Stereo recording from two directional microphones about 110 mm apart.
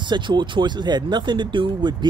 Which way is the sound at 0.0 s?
45° right (ahead or behind).